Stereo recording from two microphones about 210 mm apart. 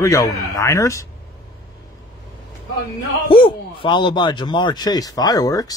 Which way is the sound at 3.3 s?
25° left (ahead or behind).